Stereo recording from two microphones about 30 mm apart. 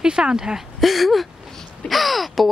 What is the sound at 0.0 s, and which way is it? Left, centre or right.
Speech, right.